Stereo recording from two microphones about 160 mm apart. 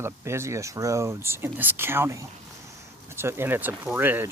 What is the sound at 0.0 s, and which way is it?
Speech, 15° right (ahead or behind).